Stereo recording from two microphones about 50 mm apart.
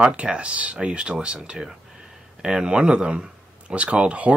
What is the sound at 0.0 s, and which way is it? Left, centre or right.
Speech, right.